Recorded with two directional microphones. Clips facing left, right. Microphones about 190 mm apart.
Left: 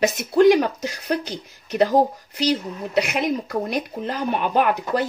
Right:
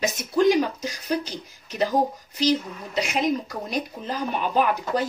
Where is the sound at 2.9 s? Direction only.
65° left (ahead or behind).